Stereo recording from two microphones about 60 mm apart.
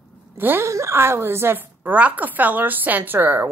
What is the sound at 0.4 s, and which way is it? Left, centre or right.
Speech, right.